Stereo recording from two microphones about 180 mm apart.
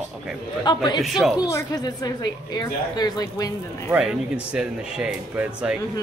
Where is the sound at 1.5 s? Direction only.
20° left (ahead or behind).